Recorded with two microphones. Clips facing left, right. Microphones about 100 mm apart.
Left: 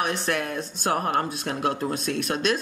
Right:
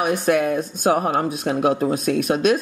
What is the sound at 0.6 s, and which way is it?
Speech, 5° right (ahead or behind).